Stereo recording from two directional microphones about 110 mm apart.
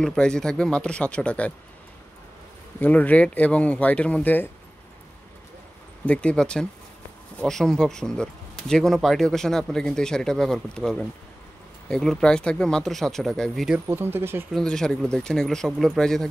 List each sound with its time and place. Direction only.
0.0 s speech: 5° left (ahead or behind)
2.8 s speech: 15° left (ahead or behind)
6.0 s speech: 10° left (ahead or behind)
13.8 s speech: 20° right (ahead or behind)
14.5 s speech: 5° left (ahead or behind)